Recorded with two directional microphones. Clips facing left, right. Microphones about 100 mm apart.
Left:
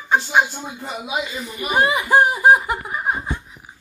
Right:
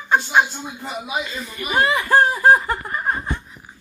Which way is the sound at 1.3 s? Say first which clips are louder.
Left 2 dB; 20° left (ahead or behind).